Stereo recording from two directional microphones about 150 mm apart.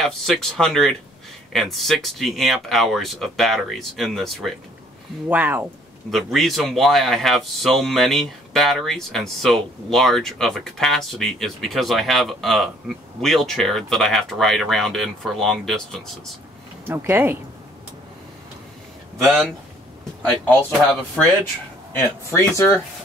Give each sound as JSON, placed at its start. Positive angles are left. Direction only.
{"t": 0.0, "sound": "speech", "side_deg": 0}
{"t": 5.3, "sound": "speech", "side_deg": -10}
{"t": 6.1, "sound": "speech", "side_deg": 0}
{"t": 16.8, "sound": "speech", "side_deg": -15}
{"t": 19.2, "sound": "speech", "side_deg": 0}